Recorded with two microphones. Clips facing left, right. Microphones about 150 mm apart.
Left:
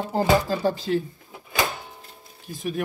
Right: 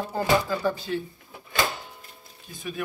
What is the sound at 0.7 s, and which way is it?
Speech, 90° left.